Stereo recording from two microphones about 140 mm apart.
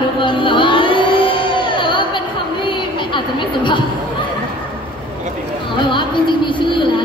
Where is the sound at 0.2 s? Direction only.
35° left (ahead or behind).